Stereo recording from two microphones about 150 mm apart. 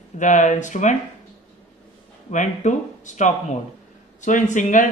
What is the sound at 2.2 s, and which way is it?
Speech, 55° left (ahead or behind).